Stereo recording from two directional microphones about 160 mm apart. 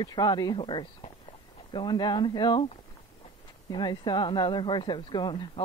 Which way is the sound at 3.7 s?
25° left (ahead or behind).